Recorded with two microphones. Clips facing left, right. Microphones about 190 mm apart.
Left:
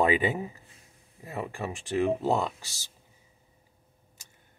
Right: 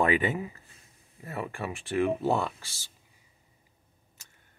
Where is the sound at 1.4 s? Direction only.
25° left (ahead or behind).